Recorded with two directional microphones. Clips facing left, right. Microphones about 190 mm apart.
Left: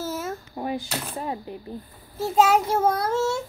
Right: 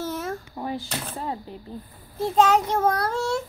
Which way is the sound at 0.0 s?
5° left (ahead or behind).